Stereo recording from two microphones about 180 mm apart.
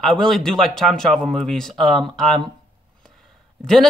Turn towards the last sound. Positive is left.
turn(degrees=5)  # may be behind; listen again after turning